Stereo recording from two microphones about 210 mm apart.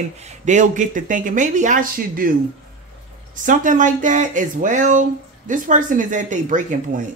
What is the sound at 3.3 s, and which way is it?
Speech, 40° right (ahead or behind).